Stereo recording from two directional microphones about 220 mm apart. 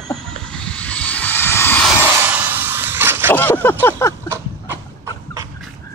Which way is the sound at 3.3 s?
10° left (ahead or behind).